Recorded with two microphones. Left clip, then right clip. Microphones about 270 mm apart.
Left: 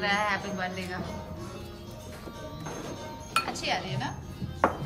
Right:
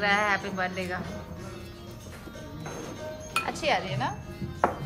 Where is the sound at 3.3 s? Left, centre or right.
Centre.